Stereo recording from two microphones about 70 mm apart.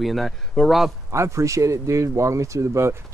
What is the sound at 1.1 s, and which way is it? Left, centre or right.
Speech, right.